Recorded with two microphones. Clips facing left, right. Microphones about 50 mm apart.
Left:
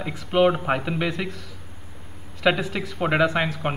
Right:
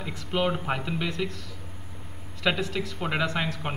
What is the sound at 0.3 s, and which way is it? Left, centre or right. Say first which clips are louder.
A man's voice: left 7 dB; left.